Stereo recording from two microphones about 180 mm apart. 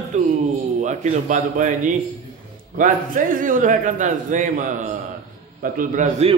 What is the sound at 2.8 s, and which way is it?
A man's voice, 50° right (ahead or behind).